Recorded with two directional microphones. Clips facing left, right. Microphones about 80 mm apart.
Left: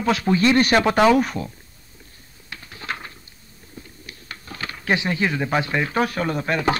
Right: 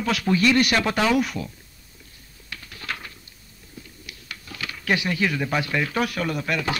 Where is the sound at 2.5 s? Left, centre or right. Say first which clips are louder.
Left 2 dB; left.